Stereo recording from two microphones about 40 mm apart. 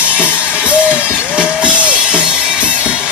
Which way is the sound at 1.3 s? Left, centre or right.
Right.